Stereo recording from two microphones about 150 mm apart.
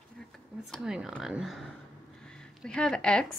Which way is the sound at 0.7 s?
5° right (ahead or behind).